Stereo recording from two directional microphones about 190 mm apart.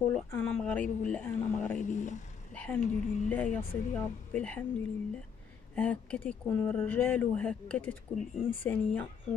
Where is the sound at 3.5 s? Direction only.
5° left (ahead or behind).